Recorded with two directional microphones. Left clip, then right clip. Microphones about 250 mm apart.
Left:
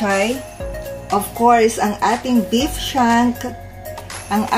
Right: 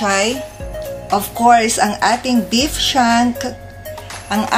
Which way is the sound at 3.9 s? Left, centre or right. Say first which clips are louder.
Right 1 dB; centre.